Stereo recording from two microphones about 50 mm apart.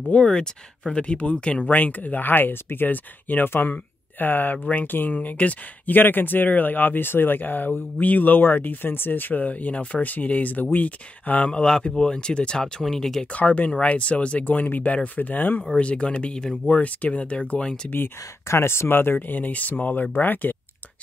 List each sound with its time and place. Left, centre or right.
0.1 s speech: centre
1.7 s speech: left
3.4 s speech: left
3.7 s speech: left; by 13.3 s centre
13.3 s speech: left
15.8 s speech: left
16.7 s speech: left
17.8 s speech: left
18.5 s speech: left